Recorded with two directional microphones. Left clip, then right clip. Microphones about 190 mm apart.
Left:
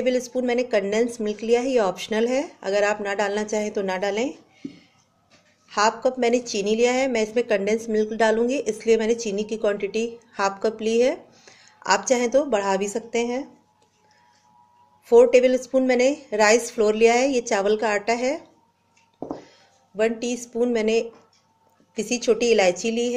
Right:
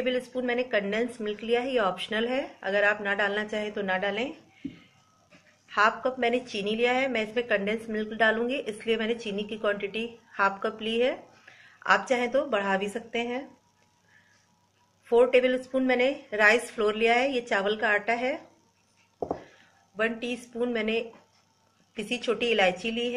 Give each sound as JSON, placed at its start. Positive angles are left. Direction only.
{"t": 0.0, "sound": "a woman's voice", "side_deg": 50}
{"t": 15.0, "sound": "a woman's voice", "side_deg": 50}
{"t": 20.0, "sound": "a woman's voice", "side_deg": 50}